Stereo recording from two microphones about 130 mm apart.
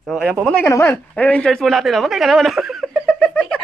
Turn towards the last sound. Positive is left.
turn(degrees=10)  # may be behind; listen again after turning